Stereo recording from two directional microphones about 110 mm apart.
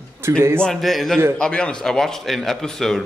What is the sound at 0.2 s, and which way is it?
Speech, 25° right (ahead or behind).